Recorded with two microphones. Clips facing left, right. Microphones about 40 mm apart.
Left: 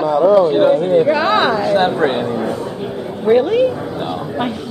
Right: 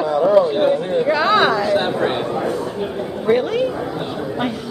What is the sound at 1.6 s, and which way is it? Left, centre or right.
Speech, left.